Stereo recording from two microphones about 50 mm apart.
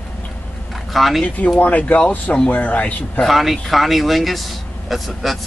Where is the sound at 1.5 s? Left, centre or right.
Left.